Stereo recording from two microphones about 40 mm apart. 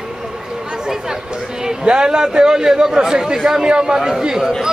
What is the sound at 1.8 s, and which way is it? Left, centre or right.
A man's voice, centre.